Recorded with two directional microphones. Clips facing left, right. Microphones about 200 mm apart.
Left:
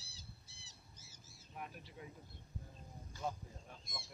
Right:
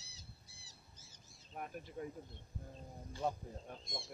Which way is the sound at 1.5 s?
45° right (ahead or behind).